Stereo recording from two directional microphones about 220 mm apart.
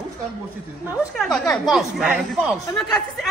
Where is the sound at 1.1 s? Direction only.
Centre (ahead or behind).